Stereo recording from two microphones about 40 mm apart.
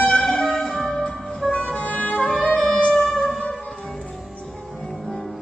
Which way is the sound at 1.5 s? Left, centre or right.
Left.